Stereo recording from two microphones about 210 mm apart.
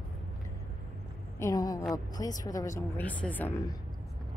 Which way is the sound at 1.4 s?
15° left (ahead or behind).